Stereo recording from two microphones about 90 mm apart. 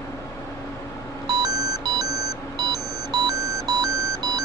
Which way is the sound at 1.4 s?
45° right (ahead or behind).